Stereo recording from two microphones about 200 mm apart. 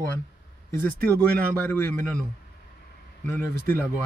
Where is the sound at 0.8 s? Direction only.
10° left (ahead or behind).